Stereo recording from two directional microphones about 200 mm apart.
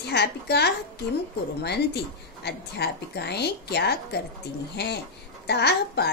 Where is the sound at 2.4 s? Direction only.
55° left (ahead or behind).